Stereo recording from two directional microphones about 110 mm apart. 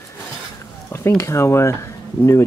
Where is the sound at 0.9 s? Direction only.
25° left (ahead or behind).